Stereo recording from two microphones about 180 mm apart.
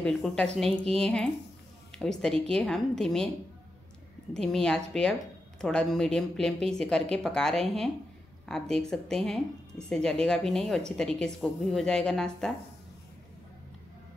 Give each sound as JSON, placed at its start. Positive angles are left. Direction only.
{"t": 0.0, "sound": "speech", "side_deg": 5}
{"t": 4.3, "sound": "speech", "side_deg": 5}